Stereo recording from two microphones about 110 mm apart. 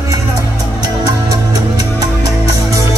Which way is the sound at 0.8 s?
35° right (ahead or behind).